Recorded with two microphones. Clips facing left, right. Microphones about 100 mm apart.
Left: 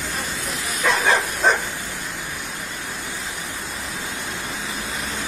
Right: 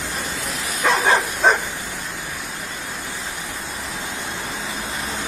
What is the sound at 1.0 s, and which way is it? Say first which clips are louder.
Bow-wow: right 2 dB; 20° right (ahead or behind).